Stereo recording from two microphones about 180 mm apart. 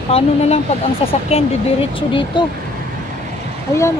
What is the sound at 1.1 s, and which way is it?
Speech, 35° left (ahead or behind).